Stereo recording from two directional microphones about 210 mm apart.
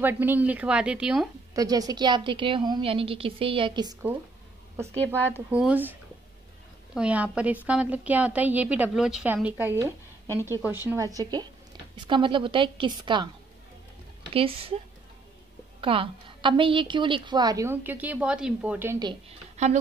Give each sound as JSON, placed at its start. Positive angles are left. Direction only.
{"t": 0.0, "sound": "a woman's voice", "side_deg": -10}
{"t": 1.5, "sound": "a woman's voice", "side_deg": -15}
{"t": 5.0, "sound": "speech", "side_deg": 10}
{"t": 5.3, "sound": "a woman's voice", "side_deg": -5}
{"t": 7.0, "sound": "a woman's voice", "side_deg": -5}
{"t": 14.3, "sound": "a woman's voice", "side_deg": -25}
{"t": 15.8, "sound": "a woman's voice", "side_deg": -25}
{"t": 19.5, "sound": "a sound", "side_deg": -35}